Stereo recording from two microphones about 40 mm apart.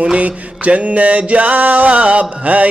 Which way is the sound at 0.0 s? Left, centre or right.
Right.